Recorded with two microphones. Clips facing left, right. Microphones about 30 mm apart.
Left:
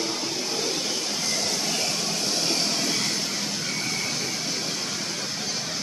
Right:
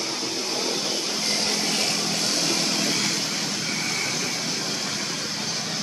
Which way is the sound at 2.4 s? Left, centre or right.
Right.